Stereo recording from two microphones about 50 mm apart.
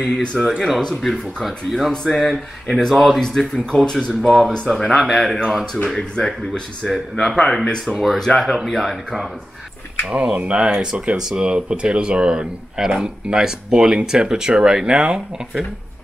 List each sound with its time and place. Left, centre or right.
0.0 s speech: centre
0.4 s speech: centre
3.2 s speech: centre
4.1 s speech: centre
5.4 s speech: centre
5.9 s speech: centre
6.9 s speech: centre
10.0 s speech: right